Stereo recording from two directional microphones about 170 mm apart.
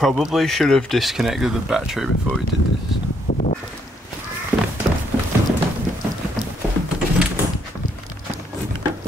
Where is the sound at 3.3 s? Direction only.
50° left (ahead or behind).